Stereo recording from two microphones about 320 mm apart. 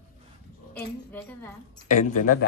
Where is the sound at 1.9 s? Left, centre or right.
Left.